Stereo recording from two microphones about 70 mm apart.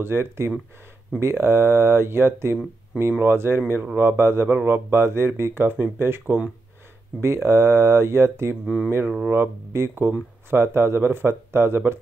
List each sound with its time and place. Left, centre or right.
0.0 s speech: right
8.6 s speech: centre
9.3 s speech: right